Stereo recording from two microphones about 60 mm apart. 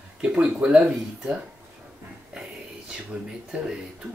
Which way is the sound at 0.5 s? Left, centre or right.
Centre.